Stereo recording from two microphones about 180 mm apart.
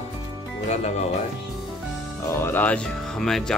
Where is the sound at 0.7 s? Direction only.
40° left (ahead or behind).